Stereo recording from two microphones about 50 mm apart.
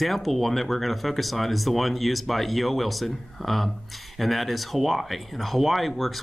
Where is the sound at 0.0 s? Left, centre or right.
Centre.